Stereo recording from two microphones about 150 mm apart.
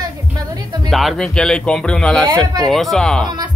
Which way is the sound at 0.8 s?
Centre (ahead or behind).